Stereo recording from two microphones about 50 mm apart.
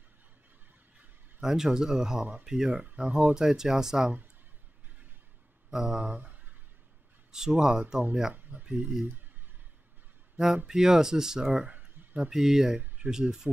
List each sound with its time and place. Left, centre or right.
1.4 s speech: centre
2.7 s speech: right
3.3 s speech: centre
5.7 s speech: centre
6.0 s a sound: right
7.3 s speech: centre
10.3 s speech: centre
11.6 s a sound: right
12.3 s speech: centre